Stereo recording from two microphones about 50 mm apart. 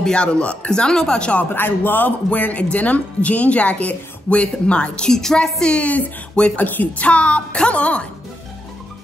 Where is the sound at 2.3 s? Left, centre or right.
Left; by 5.7 s centre.